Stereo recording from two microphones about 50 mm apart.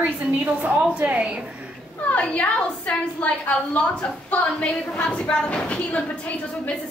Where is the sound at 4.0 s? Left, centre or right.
Left.